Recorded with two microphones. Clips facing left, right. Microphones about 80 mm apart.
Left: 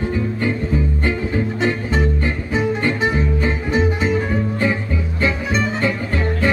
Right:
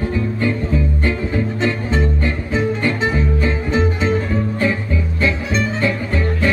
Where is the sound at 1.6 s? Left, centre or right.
Centre.